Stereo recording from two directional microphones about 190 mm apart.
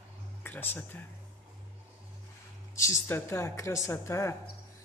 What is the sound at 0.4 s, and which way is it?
Speech, 10° left (ahead or behind).